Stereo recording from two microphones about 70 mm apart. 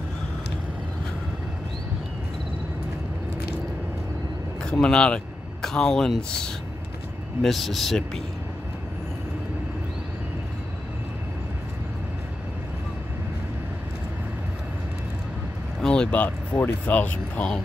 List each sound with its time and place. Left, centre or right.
4.6 s speech: centre
15.8 s vehicle: centre
16.5 s speech: left